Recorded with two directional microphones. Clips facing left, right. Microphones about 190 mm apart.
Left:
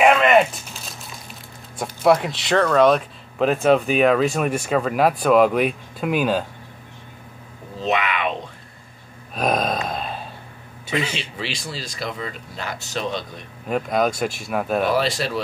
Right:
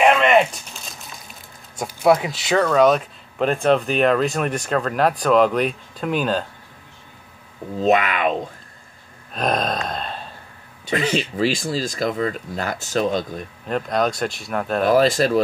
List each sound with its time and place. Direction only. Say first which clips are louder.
0.0 s a sound: even; centre (ahead or behind)
1.8 s speech: even; centre (ahead or behind)
7.8 s speech: right 4 dB; 45° right (ahead or behind)
9.3 s a sound: left 1 dB; 5° left (ahead or behind)
10.9 s speech: right 4 dB; 50° right (ahead or behind)
13.7 s speech: left 1 dB; 5° left (ahead or behind)
14.8 s speech: right 8 dB; 45° right (ahead or behind)